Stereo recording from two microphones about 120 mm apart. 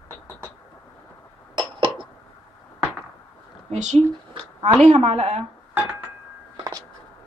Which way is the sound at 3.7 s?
75° right (ahead or behind).